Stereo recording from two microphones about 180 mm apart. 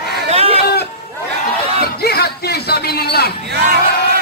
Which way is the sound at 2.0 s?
60° left (ahead or behind).